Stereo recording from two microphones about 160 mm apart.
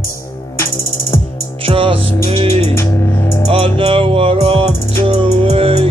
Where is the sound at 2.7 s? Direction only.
15° left (ahead or behind).